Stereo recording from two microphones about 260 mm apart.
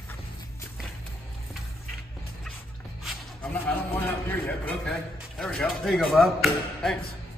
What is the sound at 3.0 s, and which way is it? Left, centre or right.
Speech, centre.